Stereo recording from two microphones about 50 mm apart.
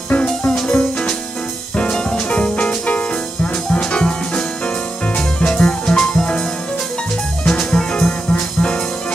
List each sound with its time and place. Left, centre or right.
0.1 s music: left
0.5 s music: centre
7.4 s music: centre